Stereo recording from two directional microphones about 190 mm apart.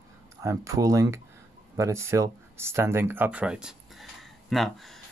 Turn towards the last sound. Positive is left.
turn(degrees=0)  # may be behind; listen again after turning